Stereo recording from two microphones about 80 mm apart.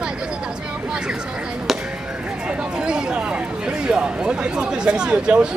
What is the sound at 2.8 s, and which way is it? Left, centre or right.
Speech, centre.